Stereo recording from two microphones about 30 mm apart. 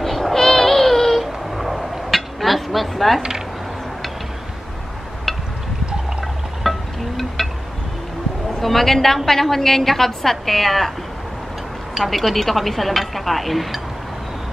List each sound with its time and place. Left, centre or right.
0.0 s baby cry: centre
1.2 s a sound: centre
3.2 s speech: centre
6.6 s a sound: centre
8.5 s a woman's voice: centre
12.0 s speech: centre